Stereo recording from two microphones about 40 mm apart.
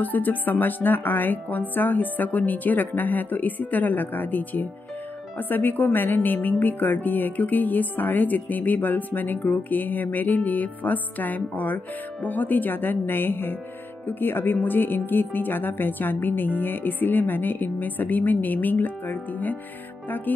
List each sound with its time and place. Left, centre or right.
0.0 s a woman's voice: left